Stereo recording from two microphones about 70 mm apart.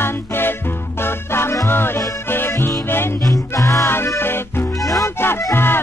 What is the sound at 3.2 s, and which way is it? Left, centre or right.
Music, left.